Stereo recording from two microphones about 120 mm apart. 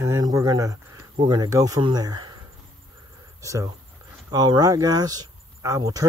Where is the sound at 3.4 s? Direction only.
25° right (ahead or behind).